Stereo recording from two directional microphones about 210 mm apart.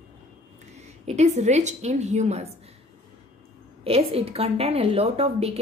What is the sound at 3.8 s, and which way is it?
A woman's voice, 30° right (ahead or behind).